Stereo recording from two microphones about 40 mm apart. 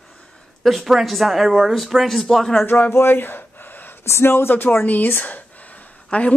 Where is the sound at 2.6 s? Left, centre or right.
Left.